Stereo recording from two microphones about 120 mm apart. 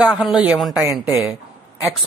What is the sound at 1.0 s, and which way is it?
Speech, 25° right (ahead or behind).